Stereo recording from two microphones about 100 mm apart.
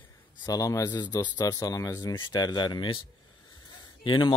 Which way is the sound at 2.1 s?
50° left (ahead or behind).